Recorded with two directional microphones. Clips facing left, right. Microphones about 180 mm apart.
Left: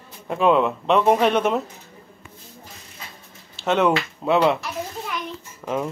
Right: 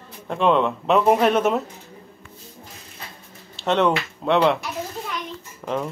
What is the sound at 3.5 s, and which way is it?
Speech, 5° left (ahead or behind).